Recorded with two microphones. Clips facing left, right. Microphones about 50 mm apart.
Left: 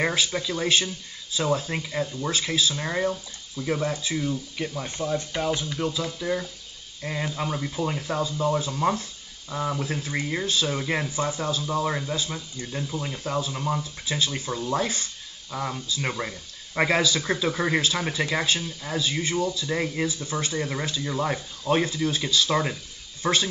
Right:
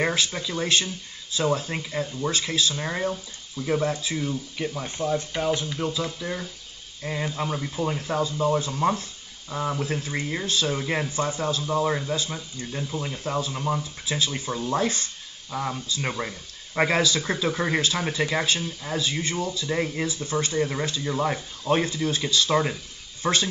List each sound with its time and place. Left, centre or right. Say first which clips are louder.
0.0 s speech: even; centre
6.1 s speech: left 4 dB; centre
15.5 s speech: right 1 dB; centre
15.9 s speech: even; centre